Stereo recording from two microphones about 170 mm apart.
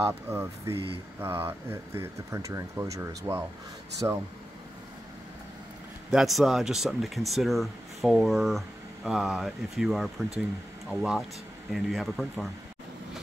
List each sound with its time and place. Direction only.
0.0 s speech: 15° right (ahead or behind)
6.0 s speech: centre (ahead or behind)